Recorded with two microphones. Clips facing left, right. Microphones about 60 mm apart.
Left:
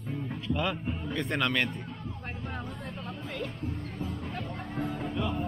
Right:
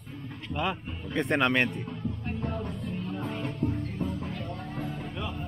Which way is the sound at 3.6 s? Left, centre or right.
Right.